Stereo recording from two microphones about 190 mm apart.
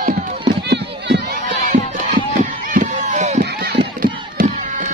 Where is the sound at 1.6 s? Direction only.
45° right (ahead or behind).